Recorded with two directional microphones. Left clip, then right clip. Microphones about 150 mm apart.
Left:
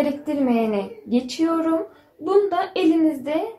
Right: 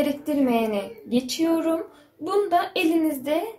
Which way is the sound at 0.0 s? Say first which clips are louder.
Left 1 dB; 45° left (ahead or behind).